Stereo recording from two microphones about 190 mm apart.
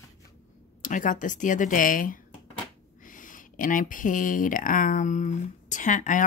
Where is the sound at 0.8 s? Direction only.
45° left (ahead or behind).